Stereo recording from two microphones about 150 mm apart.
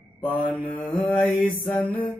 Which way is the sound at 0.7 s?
10° left (ahead or behind).